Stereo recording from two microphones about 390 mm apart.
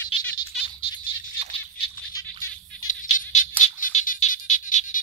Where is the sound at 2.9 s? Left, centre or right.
Centre.